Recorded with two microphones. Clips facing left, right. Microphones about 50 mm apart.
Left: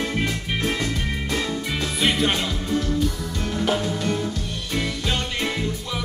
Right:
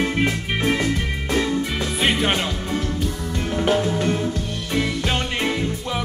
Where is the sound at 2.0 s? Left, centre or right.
Right.